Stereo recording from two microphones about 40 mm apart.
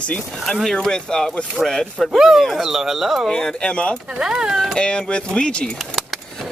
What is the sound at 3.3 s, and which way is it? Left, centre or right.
Speech, left.